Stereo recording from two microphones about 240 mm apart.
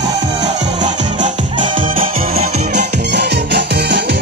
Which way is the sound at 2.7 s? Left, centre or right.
Right.